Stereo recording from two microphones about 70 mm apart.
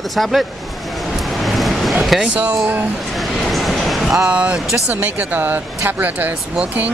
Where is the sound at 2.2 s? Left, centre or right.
Centre.